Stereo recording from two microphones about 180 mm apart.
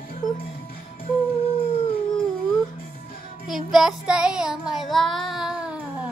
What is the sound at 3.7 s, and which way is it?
Child singing, 5° right (ahead or behind).